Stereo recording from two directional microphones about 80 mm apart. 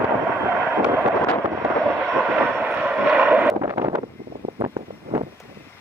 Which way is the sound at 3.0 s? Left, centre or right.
Centre.